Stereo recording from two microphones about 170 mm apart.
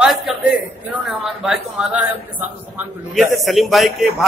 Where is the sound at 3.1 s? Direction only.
Centre (ahead or behind).